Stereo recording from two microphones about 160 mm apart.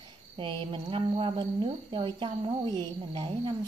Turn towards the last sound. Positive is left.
turn(degrees=-30)  # may be behind; listen again after turning